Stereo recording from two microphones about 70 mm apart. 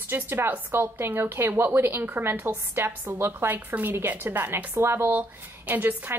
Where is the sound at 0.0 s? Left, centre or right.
Right.